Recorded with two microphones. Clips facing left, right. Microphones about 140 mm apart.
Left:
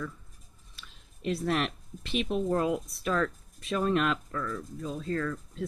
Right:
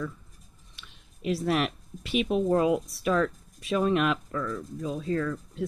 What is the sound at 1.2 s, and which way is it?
Speech, 10° right (ahead or behind).